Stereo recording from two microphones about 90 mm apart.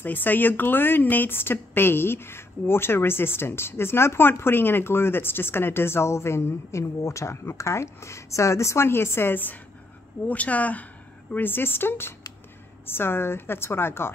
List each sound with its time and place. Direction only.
0.0 s speech: 20° left (ahead or behind)